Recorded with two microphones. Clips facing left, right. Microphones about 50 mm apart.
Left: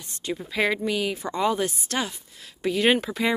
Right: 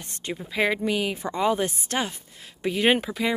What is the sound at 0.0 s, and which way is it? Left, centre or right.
Speech, right.